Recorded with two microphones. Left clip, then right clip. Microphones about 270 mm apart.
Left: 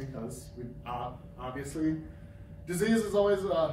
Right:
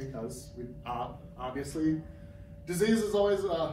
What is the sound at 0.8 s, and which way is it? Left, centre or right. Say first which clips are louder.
Speech: right 1 dB; centre.